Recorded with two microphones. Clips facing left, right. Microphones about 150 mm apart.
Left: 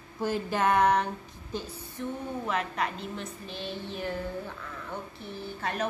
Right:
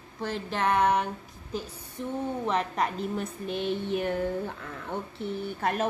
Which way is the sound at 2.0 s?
15° right (ahead or behind).